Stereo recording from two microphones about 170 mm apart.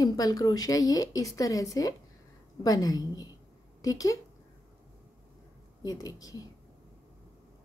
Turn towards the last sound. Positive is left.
turn(degrees=20)  # may be behind; listen again after turning